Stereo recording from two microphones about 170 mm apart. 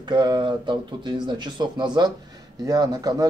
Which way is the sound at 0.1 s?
25° right (ahead or behind).